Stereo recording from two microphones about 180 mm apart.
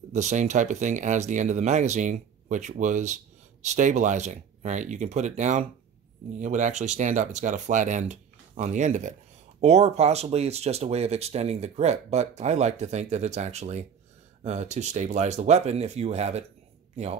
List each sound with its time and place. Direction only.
0.1 s speech: 40° right (ahead or behind)